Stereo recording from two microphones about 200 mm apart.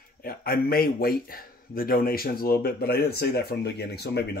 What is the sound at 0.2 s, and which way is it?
Speech, 50° left (ahead or behind).